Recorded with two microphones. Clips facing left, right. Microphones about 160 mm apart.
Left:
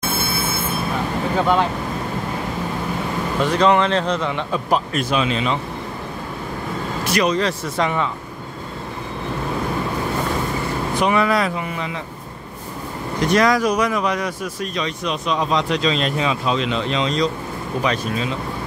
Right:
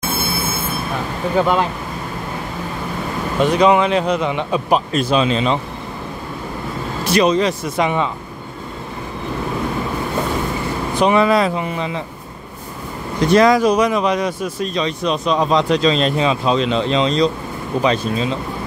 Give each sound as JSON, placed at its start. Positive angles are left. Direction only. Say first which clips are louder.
{"t": 3.3, "sound": "speech", "louder": "right 3 dB", "side_deg": -15}
{"t": 5.1, "sound": "speech", "louder": "right 4 dB", "side_deg": -30}
{"t": 7.1, "sound": "speech", "louder": "right 4 dB", "side_deg": -25}
{"t": 11.0, "sound": "speech", "louder": "right 4 dB", "side_deg": -25}
{"t": 13.3, "sound": "speech", "louder": "right 5 dB", "side_deg": -25}